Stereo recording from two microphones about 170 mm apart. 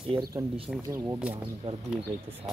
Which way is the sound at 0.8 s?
15° right (ahead or behind).